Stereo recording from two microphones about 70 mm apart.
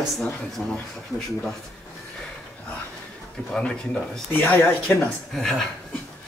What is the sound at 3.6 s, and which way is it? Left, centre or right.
Speech, centre.